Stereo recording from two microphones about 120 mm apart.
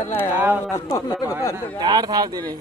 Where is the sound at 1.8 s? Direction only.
35° right (ahead or behind).